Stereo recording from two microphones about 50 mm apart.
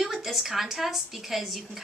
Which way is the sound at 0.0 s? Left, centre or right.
Centre.